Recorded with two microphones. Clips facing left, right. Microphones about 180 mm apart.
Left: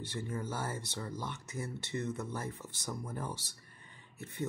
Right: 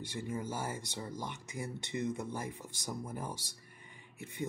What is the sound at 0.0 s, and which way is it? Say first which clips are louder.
Speech: even; 10° right (ahead or behind).